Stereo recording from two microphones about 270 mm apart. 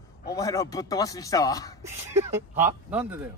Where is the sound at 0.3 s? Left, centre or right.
Centre.